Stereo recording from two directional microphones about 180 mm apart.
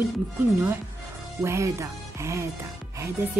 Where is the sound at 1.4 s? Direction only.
15° right (ahead or behind).